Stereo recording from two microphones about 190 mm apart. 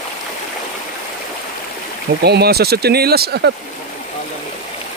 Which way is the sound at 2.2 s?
55° right (ahead or behind).